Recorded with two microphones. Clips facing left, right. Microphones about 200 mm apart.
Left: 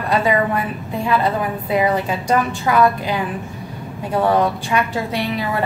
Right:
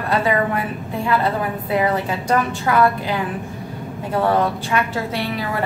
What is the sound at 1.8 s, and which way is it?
A woman's voice, 15° left (ahead or behind).